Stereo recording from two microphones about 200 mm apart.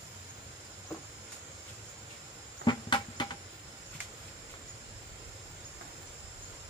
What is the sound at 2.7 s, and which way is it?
Cricket, 25° left (ahead or behind).